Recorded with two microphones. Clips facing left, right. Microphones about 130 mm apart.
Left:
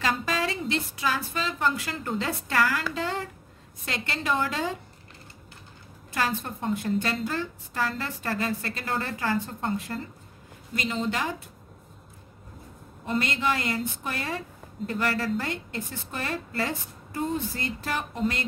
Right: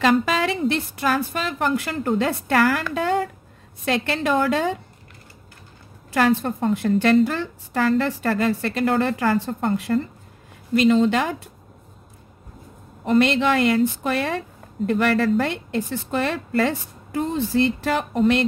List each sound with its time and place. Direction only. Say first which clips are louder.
0.0 s a woman's voice: right 8 dB; 75° right (ahead or behind); by 3.3 s 60° right (ahead or behind)
3.8 s a woman's voice: right 9 dB; 70° right (ahead or behind)
6.1 s a woman's voice: right 10 dB; 70° right (ahead or behind)
13.0 s a woman's voice: right 9 dB; 75° right (ahead or behind)